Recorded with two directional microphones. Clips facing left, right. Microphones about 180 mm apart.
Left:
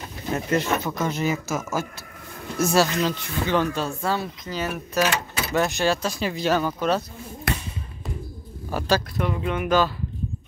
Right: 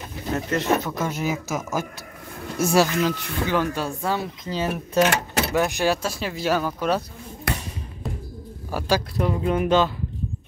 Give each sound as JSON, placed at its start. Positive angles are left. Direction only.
{"t": 0.5, "sound": "speech", "side_deg": 5}
{"t": 0.9, "sound": "speech", "side_deg": -10}
{"t": 4.5, "sound": "speech", "side_deg": -25}
{"t": 5.5, "sound": "speech", "side_deg": -10}
{"t": 8.6, "sound": "speech", "side_deg": -10}
{"t": 9.1, "sound": "speech", "side_deg": -35}